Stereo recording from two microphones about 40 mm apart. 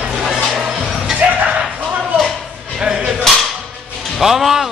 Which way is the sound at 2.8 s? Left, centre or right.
Right.